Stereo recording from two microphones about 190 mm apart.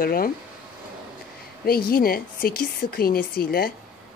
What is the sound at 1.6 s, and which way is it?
Speech, 50° left (ahead or behind).